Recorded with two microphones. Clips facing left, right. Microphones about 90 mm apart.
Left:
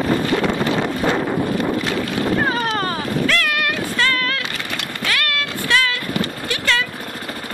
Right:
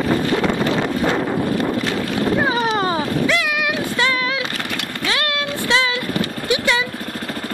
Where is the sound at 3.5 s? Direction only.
10° right (ahead or behind).